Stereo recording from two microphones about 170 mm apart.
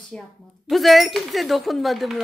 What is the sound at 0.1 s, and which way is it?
Speech, 5° left (ahead or behind).